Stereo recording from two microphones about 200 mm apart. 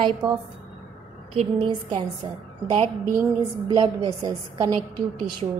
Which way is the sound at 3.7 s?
20° right (ahead or behind).